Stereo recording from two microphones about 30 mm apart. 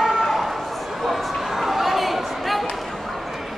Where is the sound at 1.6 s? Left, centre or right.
Centre.